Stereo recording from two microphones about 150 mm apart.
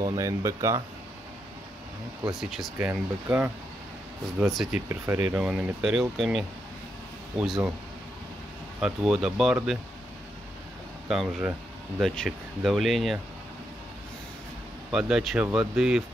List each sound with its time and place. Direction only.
0.0 s speech: 25° right (ahead or behind)
2.2 s speech: centre (ahead or behind)
4.7 s speech: 20° right (ahead or behind)
8.8 s speech: 5° right (ahead or behind)
11.1 s speech: 5° right (ahead or behind)
14.9 s speech: 5° right (ahead or behind)